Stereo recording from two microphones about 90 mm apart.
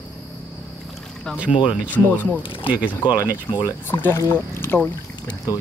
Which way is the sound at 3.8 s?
20° left (ahead or behind).